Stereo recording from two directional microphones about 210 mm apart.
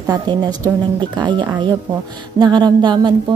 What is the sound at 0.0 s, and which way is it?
A woman's voice, 20° right (ahead or behind).